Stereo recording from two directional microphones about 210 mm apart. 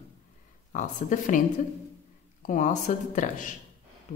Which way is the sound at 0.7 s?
35° left (ahead or behind).